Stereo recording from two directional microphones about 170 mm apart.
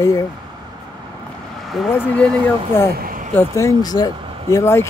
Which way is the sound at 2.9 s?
55° right (ahead or behind).